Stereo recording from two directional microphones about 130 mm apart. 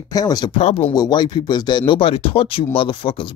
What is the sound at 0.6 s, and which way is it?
Speech, 50° left (ahead or behind).